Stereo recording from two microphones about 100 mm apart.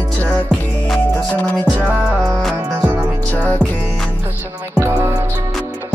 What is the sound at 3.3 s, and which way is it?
Music, 15° left (ahead or behind).